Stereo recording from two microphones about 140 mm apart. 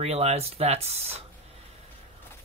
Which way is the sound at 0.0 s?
50° right (ahead or behind).